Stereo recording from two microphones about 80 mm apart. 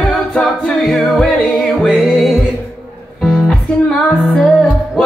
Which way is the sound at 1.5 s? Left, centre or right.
Centre.